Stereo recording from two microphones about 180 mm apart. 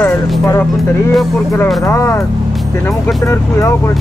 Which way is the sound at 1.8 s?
15° left (ahead or behind).